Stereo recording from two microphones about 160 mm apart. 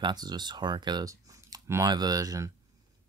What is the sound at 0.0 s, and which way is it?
Speech, 25° right (ahead or behind).